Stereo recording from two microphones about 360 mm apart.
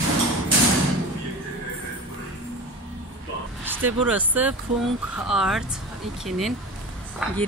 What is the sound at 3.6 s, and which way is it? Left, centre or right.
Speech, centre.